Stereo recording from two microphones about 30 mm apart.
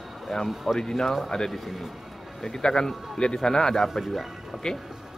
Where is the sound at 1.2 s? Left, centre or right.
Centre.